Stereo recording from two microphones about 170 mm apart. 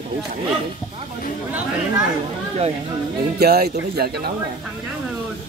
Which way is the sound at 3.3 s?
65° right (ahead or behind).